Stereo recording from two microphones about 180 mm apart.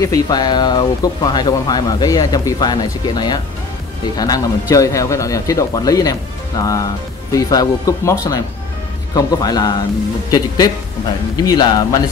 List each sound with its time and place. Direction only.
0.0 s speech: 20° left (ahead or behind)
11.3 s speech: 20° left (ahead or behind)